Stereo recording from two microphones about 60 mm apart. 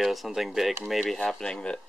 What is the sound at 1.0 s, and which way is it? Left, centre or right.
Speech, centre.